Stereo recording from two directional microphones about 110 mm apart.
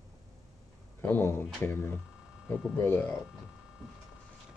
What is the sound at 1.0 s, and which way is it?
Speech, 15° left (ahead or behind).